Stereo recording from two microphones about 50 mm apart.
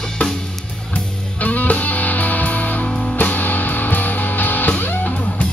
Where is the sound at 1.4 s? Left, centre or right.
Left.